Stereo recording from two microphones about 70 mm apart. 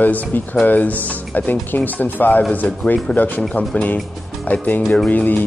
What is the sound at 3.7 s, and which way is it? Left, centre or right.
Speech, left.